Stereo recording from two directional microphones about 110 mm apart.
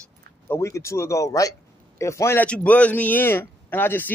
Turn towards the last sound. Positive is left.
turn(degrees=20)  # may be behind; listen again after turning